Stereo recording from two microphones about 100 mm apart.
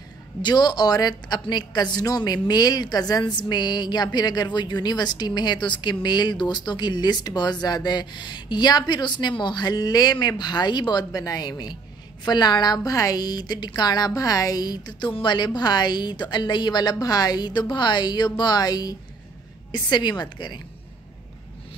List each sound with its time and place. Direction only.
0.4 s a woman's voice: 45° left (ahead or behind)